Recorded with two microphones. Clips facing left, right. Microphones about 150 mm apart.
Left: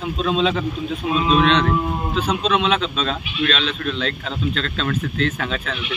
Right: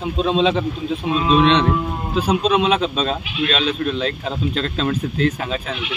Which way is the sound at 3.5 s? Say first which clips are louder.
Right 3 dB; 10° right (ahead or behind).